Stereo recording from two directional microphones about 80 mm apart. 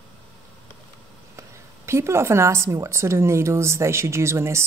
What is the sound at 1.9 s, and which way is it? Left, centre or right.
Speech, right.